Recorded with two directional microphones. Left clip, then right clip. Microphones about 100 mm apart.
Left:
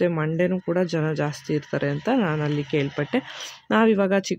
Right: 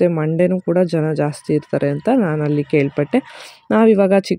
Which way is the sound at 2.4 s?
40° right (ahead or behind).